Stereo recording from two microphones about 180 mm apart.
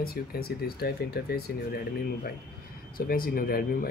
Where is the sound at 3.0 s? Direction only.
55° left (ahead or behind).